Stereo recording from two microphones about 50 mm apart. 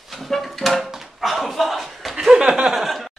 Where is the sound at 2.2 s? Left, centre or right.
Centre.